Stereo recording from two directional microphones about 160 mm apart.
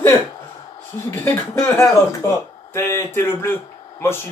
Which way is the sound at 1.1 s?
15° left (ahead or behind).